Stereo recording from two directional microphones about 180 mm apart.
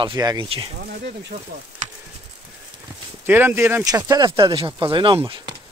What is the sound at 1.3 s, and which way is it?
Speech, 45° right (ahead or behind).